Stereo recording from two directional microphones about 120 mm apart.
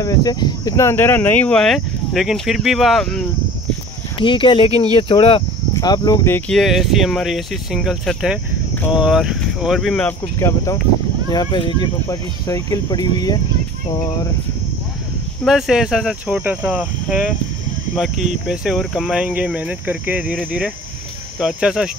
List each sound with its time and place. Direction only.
0.0 s speech: 30° left (ahead or behind); by 3.3 s 5° left (ahead or behind)
4.2 s speech: 45° left (ahead or behind)
5.8 s speech: 30° left (ahead or behind)
6.5 s speech: centre (ahead or behind)
10.0 s speech: 25° left (ahead or behind)
11.2 s speech: 40° left (ahead or behind)
12.1 s speech: 30° left (ahead or behind)
15.4 s speech: 5° right (ahead or behind)
18.5 s speech: 5° right (ahead or behind)
21.4 s speech: 5° right (ahead or behind)